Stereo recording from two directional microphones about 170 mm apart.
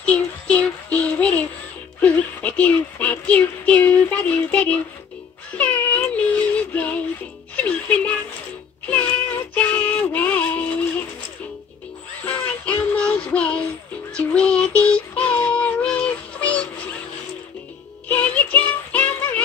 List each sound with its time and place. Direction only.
0.0 s child singing: 10° left (ahead or behind)
2.0 s a sound: 10° left (ahead or behind)
5.6 s music: 10° left (ahead or behind)
8.8 s synthetic singing: 10° left (ahead or behind)
12.3 s music: 10° left (ahead or behind)
14.1 s synthetic singing: 5° left (ahead or behind)
18.0 s music: 10° left (ahead or behind)